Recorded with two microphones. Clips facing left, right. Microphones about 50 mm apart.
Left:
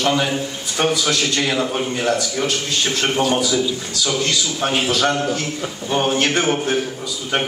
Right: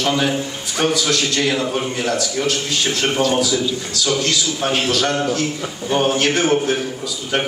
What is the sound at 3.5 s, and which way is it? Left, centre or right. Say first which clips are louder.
A man's voice: even; centre.